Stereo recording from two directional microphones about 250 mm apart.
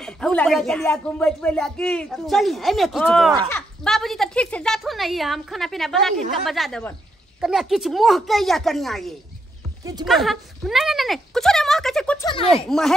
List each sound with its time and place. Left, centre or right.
0.0 s speech: centre